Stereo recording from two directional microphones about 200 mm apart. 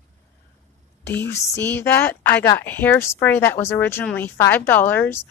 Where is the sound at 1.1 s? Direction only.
10° left (ahead or behind).